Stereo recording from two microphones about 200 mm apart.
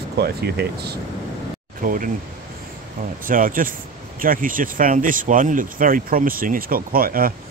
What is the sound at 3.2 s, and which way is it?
Speech, 45° right (ahead or behind).